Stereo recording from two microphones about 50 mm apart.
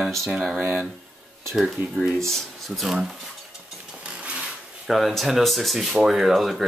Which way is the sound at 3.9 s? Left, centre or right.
Right.